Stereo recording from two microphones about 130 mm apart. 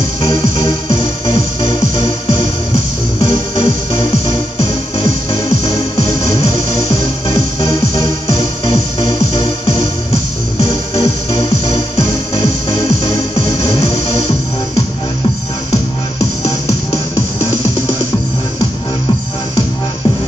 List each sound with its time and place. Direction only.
0.2 s music: 50° left (ahead or behind)
6.5 s music: 25° left (ahead or behind)
8.6 s music: 50° left (ahead or behind)
12.4 s music: 25° left (ahead or behind)
13.7 s music: 50° left (ahead or behind)
16.4 s music: 25° left (ahead or behind)